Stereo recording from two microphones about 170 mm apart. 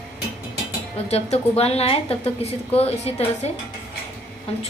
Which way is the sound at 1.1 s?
35° left (ahead or behind).